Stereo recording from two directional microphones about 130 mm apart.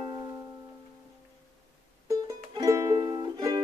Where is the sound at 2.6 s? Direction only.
25° right (ahead or behind).